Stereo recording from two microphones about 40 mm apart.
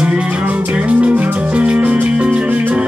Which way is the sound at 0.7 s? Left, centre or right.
Right.